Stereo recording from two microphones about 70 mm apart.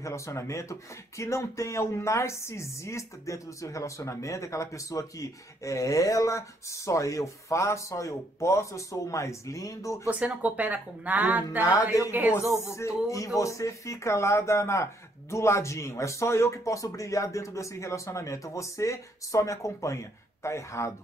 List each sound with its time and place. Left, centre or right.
0.0 s speech: left
10.0 s speech: centre
12.5 s speech: left